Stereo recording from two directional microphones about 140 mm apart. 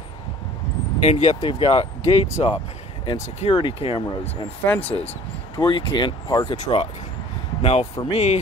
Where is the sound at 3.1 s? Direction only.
35° left (ahead or behind).